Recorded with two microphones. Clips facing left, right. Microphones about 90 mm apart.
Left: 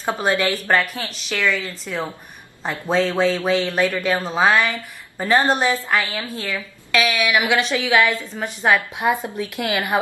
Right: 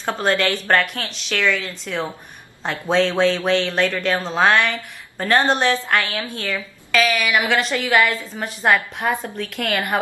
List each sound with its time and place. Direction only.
0.0 s speech: 10° left (ahead or behind)